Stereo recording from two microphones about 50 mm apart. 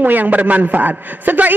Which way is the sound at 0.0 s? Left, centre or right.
Right.